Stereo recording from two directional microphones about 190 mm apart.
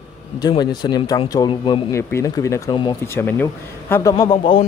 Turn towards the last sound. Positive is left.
turn(degrees=25)  # may be behind; listen again after turning